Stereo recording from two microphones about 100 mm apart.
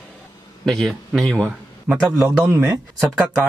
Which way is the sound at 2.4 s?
30° right (ahead or behind).